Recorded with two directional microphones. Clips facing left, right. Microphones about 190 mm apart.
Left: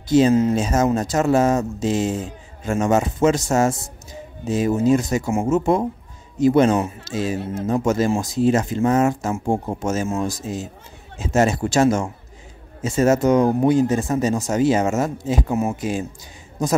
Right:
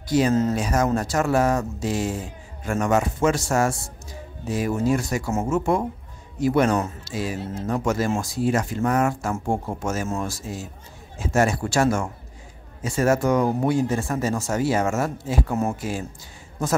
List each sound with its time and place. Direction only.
0.3 s speech: 10° left (ahead or behind)
0.6 s a man's voice: 25° left (ahead or behind)